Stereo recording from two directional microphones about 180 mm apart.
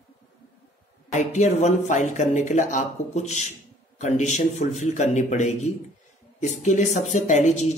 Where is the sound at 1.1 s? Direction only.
40° left (ahead or behind).